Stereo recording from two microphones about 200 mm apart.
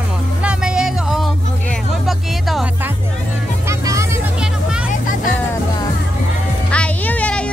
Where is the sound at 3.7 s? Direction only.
15° right (ahead or behind).